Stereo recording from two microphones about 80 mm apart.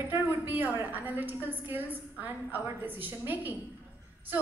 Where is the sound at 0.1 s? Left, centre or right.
Right.